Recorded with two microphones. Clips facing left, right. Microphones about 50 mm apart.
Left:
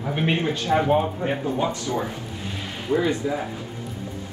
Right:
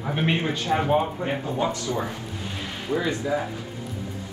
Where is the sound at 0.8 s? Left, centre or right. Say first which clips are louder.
Left 2 dB; centre.